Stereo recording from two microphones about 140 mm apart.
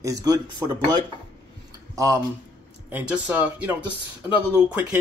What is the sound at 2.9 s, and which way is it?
Speech, 10° right (ahead or behind).